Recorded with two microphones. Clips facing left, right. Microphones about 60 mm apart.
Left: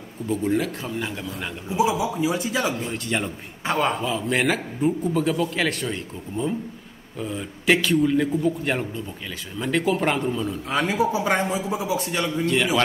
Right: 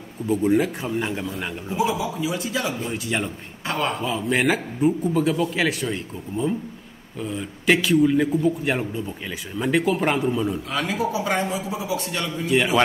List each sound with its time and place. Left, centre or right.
0.3 s a man's voice: centre
1.7 s a man's voice: centre
2.0 s speech: left
2.7 s a man's voice: centre
10.7 s speech: left
12.1 s a man's voice: centre